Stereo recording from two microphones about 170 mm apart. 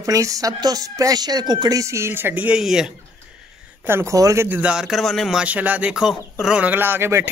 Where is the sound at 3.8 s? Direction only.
15° right (ahead or behind).